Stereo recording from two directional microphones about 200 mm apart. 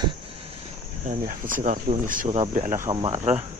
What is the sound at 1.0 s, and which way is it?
Speech, 40° right (ahead or behind).